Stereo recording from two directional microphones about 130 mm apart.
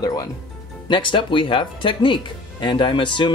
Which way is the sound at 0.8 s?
40° left (ahead or behind).